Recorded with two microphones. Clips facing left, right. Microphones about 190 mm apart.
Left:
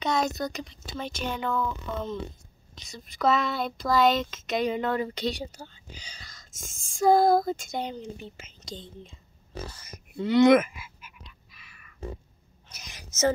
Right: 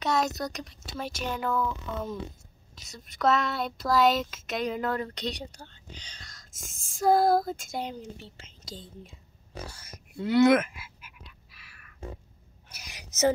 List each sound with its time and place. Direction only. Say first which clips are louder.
0.0 s speech: left 1 dB; centre (ahead or behind)
10.1 s speech: left 2 dB; 5° right (ahead or behind)
11.0 s a sound: left 1 dB; 5° right (ahead or behind)